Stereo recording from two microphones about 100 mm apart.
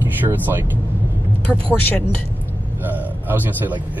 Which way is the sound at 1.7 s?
15° left (ahead or behind).